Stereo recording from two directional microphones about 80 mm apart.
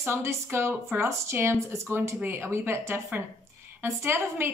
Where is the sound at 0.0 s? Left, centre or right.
Right.